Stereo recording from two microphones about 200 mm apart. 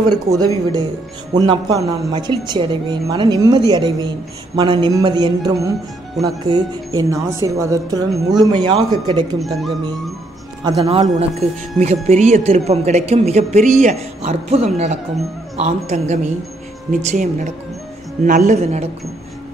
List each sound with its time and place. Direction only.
0.1 s a woman's voice: 20° right (ahead or behind)
9.4 s speech: centre (ahead or behind)
10.6 s speech: 20° right (ahead or behind)